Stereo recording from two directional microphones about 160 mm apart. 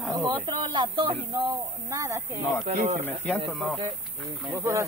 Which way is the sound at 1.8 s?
20° right (ahead or behind).